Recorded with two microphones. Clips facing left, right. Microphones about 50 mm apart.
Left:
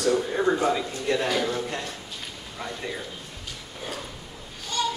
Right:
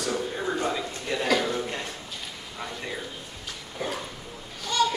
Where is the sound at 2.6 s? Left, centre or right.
Centre.